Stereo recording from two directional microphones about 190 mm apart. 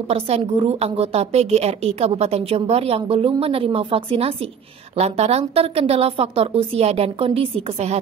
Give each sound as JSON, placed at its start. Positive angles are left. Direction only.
{"t": 0.1, "sound": "a woman's voice", "side_deg": -30}